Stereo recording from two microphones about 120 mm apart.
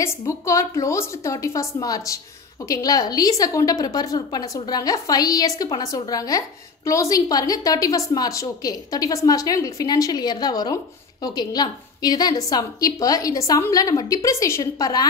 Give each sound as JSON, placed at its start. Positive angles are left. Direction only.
{"t": 0.0, "sound": "a woman's voice", "side_deg": 25}